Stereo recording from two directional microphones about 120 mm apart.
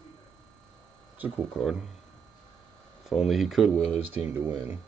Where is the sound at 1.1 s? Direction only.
15° right (ahead or behind).